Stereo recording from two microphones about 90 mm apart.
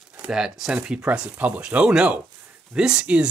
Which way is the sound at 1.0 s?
15° right (ahead or behind).